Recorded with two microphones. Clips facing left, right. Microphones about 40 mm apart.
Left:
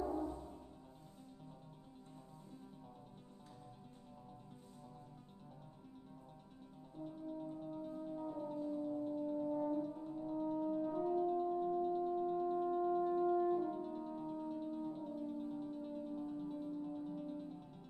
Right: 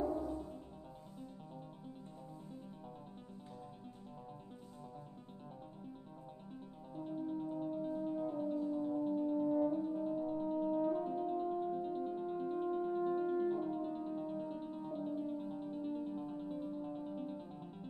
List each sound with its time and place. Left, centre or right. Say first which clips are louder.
7.0 s music: right 5 dB; right